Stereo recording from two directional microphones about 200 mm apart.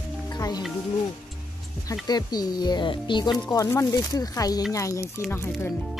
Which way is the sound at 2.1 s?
20° left (ahead or behind).